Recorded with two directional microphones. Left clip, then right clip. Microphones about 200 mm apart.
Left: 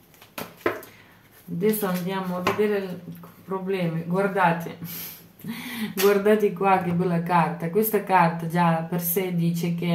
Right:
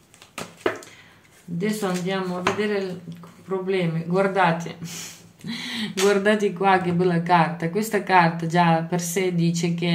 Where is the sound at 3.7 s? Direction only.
30° right (ahead or behind).